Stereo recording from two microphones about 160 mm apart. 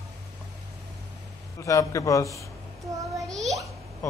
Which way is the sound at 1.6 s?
20° left (ahead or behind).